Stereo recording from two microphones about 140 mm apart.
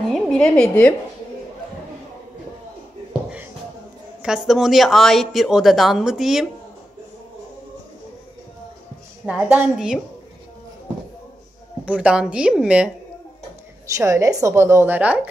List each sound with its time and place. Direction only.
0.1 s a woman's voice: 5° left (ahead or behind)
3.1 s shuffle: 5° right (ahead or behind)
4.2 s a woman's voice: 5° right (ahead or behind)
9.2 s a woman's voice: 10° right (ahead or behind)
11.8 s a woman's voice: 10° right (ahead or behind)
13.9 s a woman's voice: 20° right (ahead or behind)